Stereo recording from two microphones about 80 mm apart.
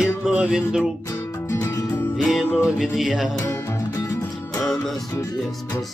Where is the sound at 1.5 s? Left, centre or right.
Left.